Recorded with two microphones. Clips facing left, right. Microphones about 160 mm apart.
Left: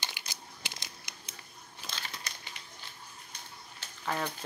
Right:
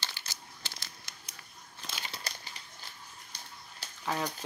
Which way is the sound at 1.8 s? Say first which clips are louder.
Even; 5° left (ahead or behind).